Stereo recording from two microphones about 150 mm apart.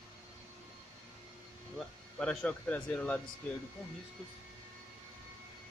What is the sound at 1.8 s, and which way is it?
Speech, 5° left (ahead or behind).